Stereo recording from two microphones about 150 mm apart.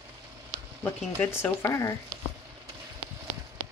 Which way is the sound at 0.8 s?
15° left (ahead or behind).